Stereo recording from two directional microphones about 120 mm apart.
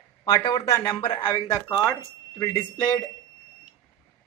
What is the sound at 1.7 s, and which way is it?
Speech, 20° left (ahead or behind).